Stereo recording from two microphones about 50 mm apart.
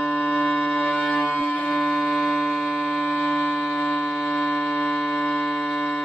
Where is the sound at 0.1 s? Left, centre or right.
Left.